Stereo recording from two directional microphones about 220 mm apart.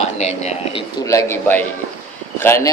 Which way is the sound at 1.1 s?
15° left (ahead or behind).